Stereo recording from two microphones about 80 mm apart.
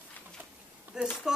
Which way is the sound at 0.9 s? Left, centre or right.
Centre.